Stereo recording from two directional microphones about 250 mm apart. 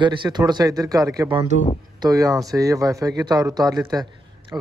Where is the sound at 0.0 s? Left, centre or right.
Centre.